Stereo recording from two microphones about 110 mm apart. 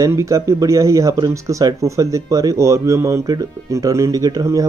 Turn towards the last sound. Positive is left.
turn(degrees=-35)  # may be behind; listen again after turning